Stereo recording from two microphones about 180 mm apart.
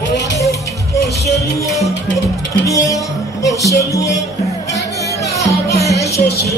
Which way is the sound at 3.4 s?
20° left (ahead or behind).